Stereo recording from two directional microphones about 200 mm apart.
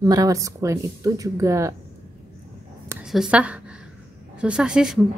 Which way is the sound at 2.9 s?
5° right (ahead or behind).